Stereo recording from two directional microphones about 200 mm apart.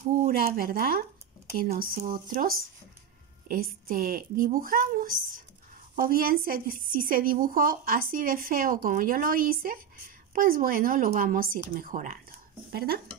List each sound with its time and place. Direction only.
0.4 s speech: 45° right (ahead or behind)
3.4 s speech: 45° right (ahead or behind)